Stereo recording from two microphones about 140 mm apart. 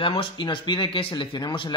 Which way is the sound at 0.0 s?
40° left (ahead or behind).